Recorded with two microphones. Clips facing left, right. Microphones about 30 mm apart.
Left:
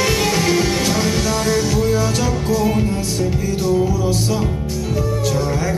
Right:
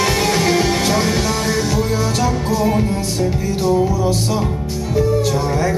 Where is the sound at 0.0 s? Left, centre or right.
Centre.